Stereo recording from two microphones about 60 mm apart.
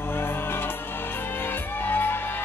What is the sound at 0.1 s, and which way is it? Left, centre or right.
Music, left.